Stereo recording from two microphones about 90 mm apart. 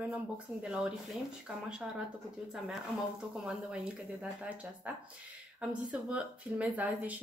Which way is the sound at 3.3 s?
10° right (ahead or behind).